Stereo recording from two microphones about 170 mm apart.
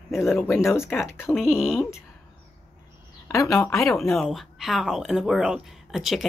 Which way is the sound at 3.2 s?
20° left (ahead or behind).